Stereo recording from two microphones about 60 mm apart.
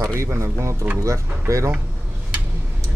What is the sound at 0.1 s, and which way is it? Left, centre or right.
Speech, right.